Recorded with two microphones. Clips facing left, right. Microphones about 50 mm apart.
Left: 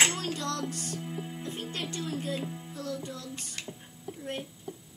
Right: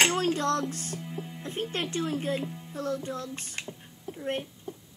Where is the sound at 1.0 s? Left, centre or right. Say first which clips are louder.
Even; centre.